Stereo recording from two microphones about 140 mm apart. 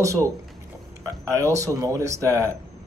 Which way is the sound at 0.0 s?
20° right (ahead or behind).